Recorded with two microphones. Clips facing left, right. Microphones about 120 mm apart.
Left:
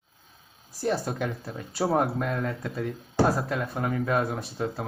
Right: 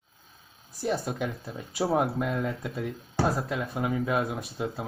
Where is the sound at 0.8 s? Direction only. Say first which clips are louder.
Left 2 dB; centre (ahead or behind).